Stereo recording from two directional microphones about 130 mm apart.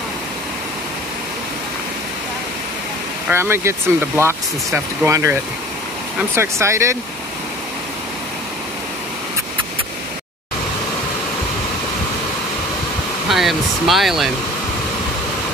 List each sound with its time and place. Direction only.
3.3 s speech: 20° right (ahead or behind)
13.3 s speech: centre (ahead or behind)